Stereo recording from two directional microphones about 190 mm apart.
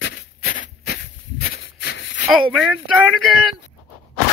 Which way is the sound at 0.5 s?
45° left (ahead or behind).